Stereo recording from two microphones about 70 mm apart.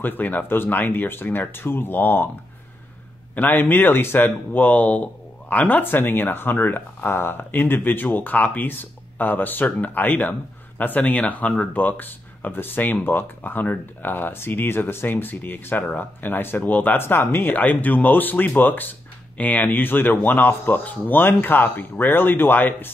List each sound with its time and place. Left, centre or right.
0.0 s speech: left
3.3 s speech: left